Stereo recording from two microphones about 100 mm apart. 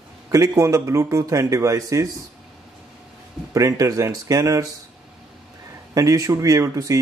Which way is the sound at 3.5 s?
35° right (ahead or behind).